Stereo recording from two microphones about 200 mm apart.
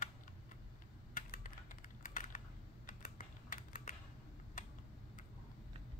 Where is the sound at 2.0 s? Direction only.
40° left (ahead or behind).